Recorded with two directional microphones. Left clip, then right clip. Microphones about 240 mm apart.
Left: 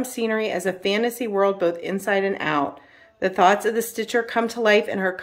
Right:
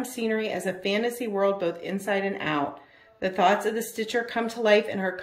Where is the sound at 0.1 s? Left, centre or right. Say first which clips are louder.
Left 4 dB; centre.